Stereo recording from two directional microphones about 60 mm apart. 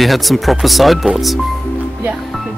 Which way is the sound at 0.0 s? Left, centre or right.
Centre.